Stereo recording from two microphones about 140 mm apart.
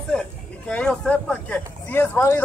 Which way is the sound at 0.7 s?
10° left (ahead or behind).